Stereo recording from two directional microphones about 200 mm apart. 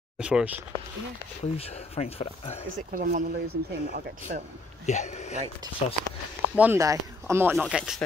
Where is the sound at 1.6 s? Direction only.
30° left (ahead or behind).